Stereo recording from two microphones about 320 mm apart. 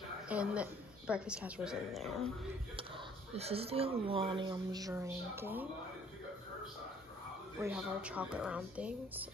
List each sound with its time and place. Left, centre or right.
0.3 s a woman's voice: centre
3.3 s speech: centre
7.6 s a woman's voice: centre